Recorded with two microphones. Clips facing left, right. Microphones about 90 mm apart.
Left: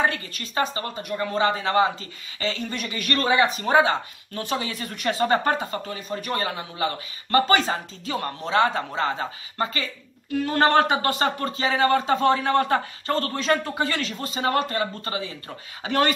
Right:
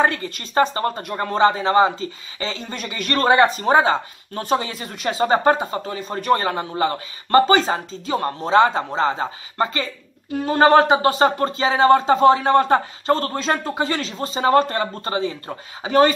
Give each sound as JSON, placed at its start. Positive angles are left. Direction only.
{"t": 0.0, "sound": "a woman's voice", "side_deg": -35}
{"t": 4.7, "sound": "speech", "side_deg": -20}
{"t": 5.9, "sound": "a woman's voice", "side_deg": -35}
{"t": 10.3, "sound": "speech", "side_deg": -20}
{"t": 15.8, "sound": "speech", "side_deg": -25}